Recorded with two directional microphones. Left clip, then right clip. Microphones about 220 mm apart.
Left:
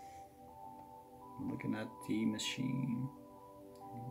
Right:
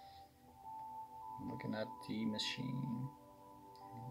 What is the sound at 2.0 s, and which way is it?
Speech, 40° left (ahead or behind).